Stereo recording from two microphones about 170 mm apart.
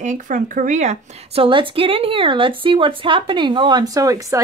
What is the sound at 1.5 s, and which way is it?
Speech, 30° right (ahead or behind).